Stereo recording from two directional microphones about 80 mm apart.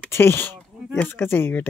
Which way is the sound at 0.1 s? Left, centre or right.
Left.